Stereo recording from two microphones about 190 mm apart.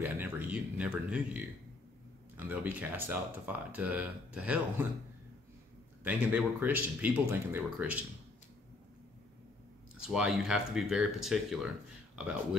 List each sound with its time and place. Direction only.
0.0 s speech: 10° right (ahead or behind)
6.0 s speech: 10° right (ahead or behind)
10.0 s speech: 5° right (ahead or behind)